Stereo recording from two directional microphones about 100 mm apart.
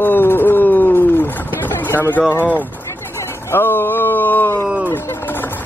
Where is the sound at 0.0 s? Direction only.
20° left (ahead or behind).